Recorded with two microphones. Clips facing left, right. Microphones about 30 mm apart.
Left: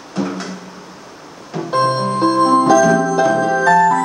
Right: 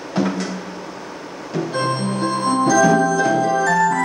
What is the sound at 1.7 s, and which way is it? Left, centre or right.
Music, left.